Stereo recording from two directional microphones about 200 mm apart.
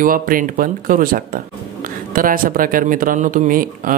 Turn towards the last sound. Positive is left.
turn(degrees=-45)  # may be behind; listen again after turning